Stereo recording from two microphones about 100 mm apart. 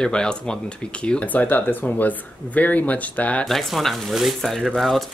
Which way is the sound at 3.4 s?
Centre (ahead or behind).